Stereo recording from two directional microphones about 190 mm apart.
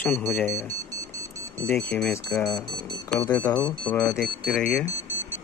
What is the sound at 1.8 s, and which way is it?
Speech, 5° left (ahead or behind).